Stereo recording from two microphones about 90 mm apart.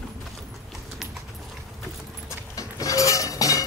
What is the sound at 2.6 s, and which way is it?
Dishes, 40° left (ahead or behind).